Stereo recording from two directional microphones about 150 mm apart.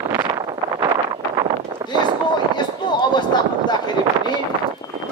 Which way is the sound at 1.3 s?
35° right (ahead or behind).